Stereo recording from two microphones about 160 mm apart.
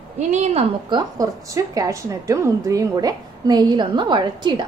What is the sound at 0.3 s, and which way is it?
Speech, 45° right (ahead or behind).